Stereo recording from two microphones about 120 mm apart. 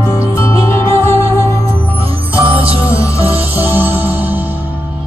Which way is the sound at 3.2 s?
55° right (ahead or behind).